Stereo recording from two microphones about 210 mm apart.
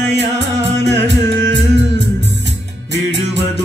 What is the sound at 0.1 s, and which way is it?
Music, 55° right (ahead or behind).